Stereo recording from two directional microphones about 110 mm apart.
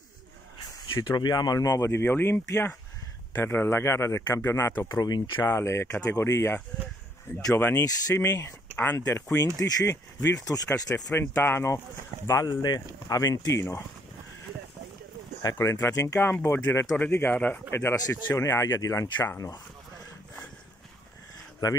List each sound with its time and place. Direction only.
0.9 s speech: 35° left (ahead or behind)
4.9 s speech: 40° left (ahead or behind)
5.5 s speech: 25° left (ahead or behind)
7.8 s speech: 25° left (ahead or behind)
11.1 s speech: 20° left (ahead or behind)
15.5 s speech: 25° left (ahead or behind)
16.9 s a man's voice: 15° left (ahead or behind)
21.6 s speech: 40° left (ahead or behind)